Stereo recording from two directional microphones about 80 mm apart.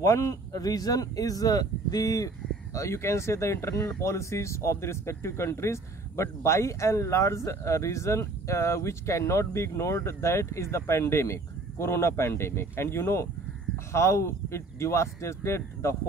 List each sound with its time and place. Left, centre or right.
0.0 s speech: left